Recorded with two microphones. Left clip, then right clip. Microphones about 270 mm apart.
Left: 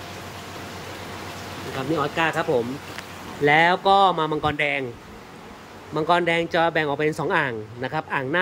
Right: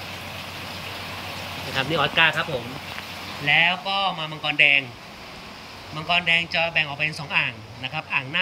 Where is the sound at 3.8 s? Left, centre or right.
Left.